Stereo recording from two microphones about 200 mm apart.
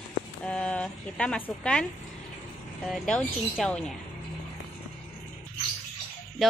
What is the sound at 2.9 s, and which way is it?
A woman's voice, centre (ahead or behind).